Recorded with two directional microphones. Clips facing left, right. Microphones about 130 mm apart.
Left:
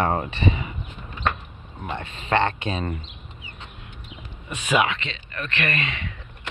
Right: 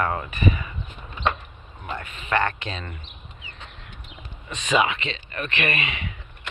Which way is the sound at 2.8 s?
35° left (ahead or behind).